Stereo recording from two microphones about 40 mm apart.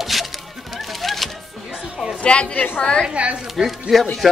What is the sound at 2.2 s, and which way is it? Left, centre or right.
Speech, left.